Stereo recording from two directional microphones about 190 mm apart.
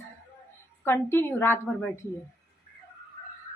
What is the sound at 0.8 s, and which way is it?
A woman's voice, 10° left (ahead or behind).